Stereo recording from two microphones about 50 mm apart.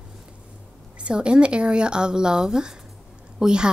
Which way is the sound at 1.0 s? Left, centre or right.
Right.